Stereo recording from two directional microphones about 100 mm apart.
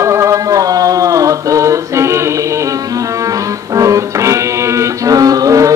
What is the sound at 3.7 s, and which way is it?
Music, 35° right (ahead or behind).